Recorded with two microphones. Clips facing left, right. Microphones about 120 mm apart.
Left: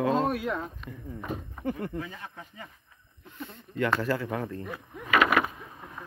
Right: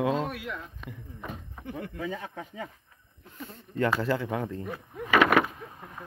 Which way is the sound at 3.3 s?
40° right (ahead or behind).